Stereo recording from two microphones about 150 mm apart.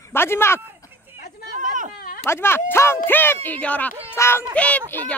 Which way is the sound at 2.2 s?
15° left (ahead or behind).